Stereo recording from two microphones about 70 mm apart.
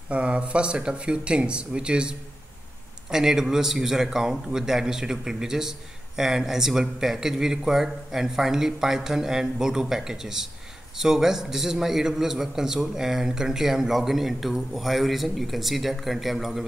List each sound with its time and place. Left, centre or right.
0.1 s a man's voice: centre